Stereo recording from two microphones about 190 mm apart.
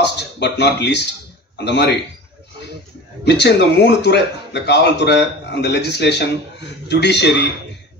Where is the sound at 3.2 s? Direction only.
60° left (ahead or behind).